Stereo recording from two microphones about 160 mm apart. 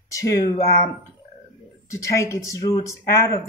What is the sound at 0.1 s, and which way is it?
Speech, 20° left (ahead or behind).